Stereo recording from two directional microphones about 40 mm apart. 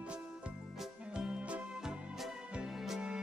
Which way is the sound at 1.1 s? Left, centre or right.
Right.